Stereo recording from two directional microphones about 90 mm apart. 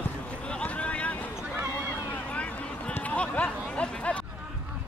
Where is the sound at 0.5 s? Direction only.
15° left (ahead or behind).